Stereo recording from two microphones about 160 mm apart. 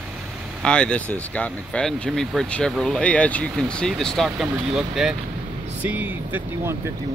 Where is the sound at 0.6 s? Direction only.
5° left (ahead or behind); by 6.7 s 10° right (ahead or behind).